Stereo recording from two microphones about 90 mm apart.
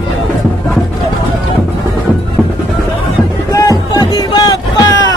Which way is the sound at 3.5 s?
40° left (ahead or behind).